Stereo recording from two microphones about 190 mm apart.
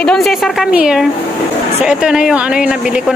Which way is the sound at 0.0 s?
Centre (ahead or behind).